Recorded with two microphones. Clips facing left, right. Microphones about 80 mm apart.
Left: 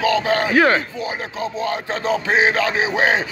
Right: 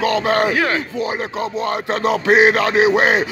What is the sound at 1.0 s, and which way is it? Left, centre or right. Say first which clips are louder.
Speech: right 3 dB; right.